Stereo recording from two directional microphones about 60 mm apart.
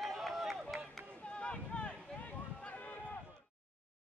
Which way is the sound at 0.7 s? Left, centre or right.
Right.